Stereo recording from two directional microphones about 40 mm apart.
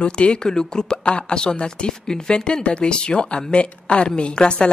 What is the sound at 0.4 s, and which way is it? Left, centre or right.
Speech, centre.